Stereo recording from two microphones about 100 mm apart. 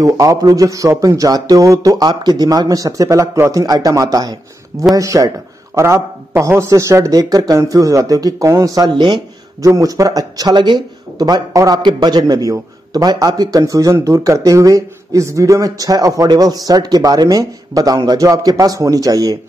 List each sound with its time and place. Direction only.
0.0 s speech: 35° right (ahead or behind)
9.6 s speech: 35° right (ahead or behind)